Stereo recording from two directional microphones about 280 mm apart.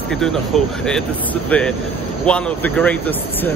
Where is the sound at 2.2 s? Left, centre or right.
Centre.